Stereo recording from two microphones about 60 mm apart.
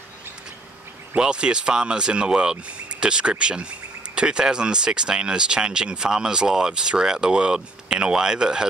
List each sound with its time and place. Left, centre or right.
1.1 s speech: centre